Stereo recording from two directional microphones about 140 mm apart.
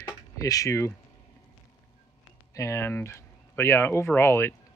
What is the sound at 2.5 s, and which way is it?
Speech, 20° left (ahead or behind).